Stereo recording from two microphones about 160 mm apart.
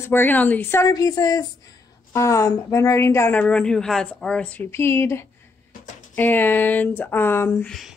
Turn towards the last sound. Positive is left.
turn(degrees=10)  # may be behind; listen again after turning